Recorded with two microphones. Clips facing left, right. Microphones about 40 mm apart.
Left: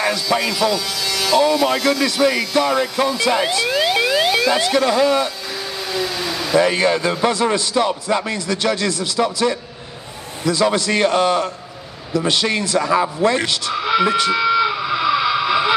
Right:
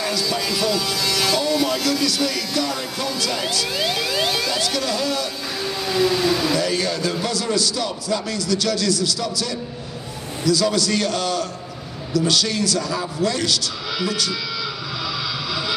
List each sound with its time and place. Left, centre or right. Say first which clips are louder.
0.1 s speech: left 4 dB; left
0.5 s speech: left 3 dB; centre
0.8 s speech: even; centre
1.7 s speech: left 4 dB; left
5.8 s vehicle: right 5 dB; centre
6.5 s speech: left 6 dB; left
13.2 s a sound: left 4 dB; left